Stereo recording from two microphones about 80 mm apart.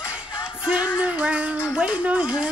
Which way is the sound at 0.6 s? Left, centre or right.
Centre.